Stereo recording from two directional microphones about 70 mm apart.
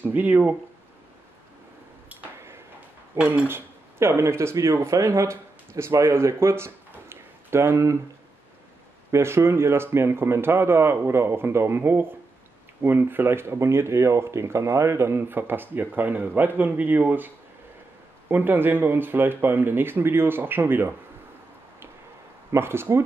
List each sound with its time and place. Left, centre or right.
0.0 s speech: right
3.4 s speech: right
9.1 s speech: right
18.3 s speech: right
22.5 s speech: right